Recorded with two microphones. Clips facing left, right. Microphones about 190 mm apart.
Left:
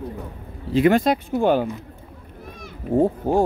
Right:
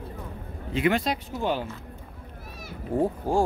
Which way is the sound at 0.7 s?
45° left (ahead or behind).